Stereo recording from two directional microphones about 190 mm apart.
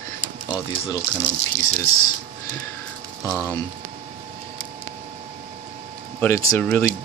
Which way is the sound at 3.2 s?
15° left (ahead or behind).